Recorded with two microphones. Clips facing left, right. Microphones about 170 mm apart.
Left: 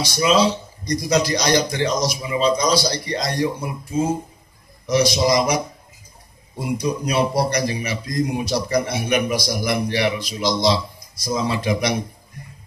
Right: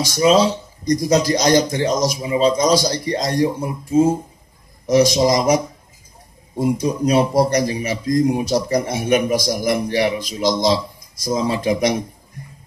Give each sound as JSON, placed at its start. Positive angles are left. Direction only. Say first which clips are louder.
{"t": 0.0, "sound": "speech", "louder": "right 3 dB", "side_deg": -45}
{"t": 6.6, "sound": "speech", "louder": "right 5 dB", "side_deg": -45}